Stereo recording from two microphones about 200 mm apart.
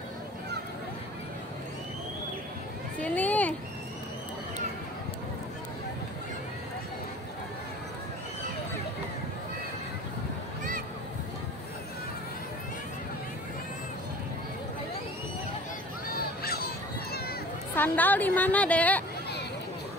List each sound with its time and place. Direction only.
3.0 s a sound: 5° left (ahead or behind)
16.2 s honk: 50° left (ahead or behind)
17.7 s a woman's voice: 10° left (ahead or behind)